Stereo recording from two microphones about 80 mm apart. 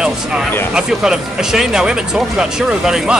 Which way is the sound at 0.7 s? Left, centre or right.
Centre.